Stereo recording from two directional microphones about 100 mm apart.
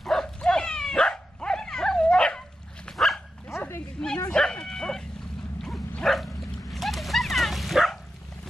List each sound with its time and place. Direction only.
0.0 s dog: 5° left (ahead or behind)
3.4 s bow-wow: 25° left (ahead or behind)
4.3 s bow-wow: 5° left (ahead or behind)
5.6 s dog: 5° left (ahead or behind)